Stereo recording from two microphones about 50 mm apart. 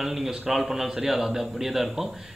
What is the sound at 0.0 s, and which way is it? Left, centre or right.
A man's voice, centre.